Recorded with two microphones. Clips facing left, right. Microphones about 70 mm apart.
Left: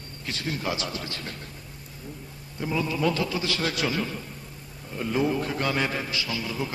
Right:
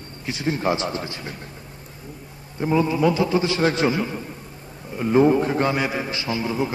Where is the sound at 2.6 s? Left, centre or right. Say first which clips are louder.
Right 7 dB; right.